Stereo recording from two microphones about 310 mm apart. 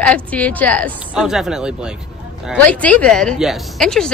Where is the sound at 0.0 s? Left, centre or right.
Centre.